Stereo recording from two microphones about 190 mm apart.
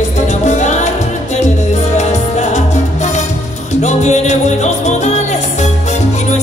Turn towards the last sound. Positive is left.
turn(degrees=40)  # may be behind; listen again after turning